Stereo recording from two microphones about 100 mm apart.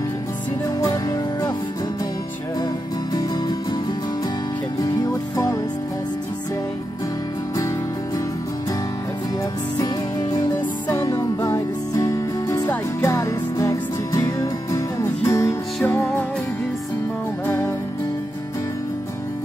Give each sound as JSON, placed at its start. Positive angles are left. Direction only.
{"t": 4.7, "sound": "music", "side_deg": 35}
{"t": 10.9, "sound": "music", "side_deg": 35}
{"t": 17.5, "sound": "music", "side_deg": 30}